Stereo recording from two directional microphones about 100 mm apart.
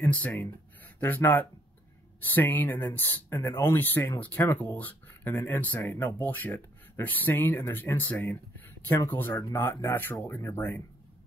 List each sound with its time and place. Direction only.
0.0 s speech: 15° left (ahead or behind)